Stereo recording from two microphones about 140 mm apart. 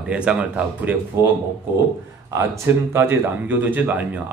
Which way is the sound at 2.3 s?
20° right (ahead or behind).